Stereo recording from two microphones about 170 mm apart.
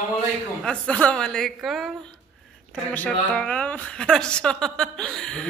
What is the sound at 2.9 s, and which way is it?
Speech, 5° left (ahead or behind).